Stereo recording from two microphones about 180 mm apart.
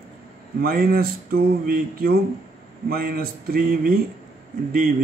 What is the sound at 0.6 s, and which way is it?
Speech, 55° right (ahead or behind).